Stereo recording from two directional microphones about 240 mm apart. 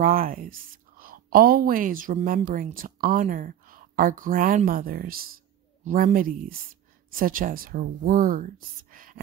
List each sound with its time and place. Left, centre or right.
0.0 s a woman's voice: right